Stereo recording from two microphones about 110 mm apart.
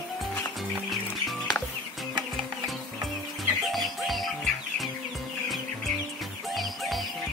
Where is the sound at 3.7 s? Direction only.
Centre (ahead or behind).